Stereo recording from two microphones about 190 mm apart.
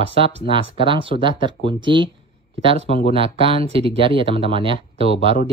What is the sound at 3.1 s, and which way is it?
Speech, 30° right (ahead or behind).